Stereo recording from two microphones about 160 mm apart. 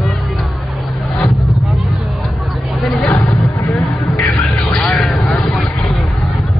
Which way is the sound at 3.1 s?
20° left (ahead or behind).